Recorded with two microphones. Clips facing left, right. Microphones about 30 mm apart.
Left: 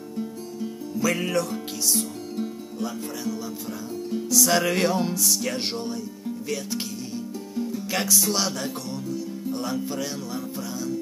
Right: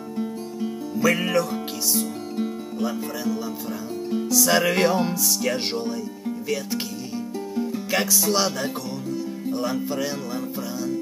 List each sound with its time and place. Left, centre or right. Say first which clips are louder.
0.2 s music: right 3 dB; right
1.0 s music: right 3 dB; centre
7.9 s music: right 3 dB; centre